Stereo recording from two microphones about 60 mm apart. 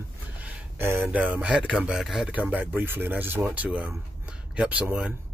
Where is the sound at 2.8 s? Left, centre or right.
Right.